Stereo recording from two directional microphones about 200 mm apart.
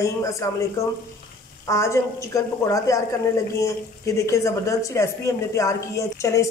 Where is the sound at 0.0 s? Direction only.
15° left (ahead or behind).